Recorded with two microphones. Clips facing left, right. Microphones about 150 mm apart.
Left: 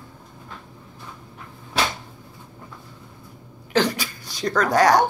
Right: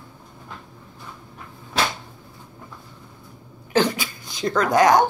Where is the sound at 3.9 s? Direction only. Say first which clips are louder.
Right 1 dB; 40° left (ahead or behind).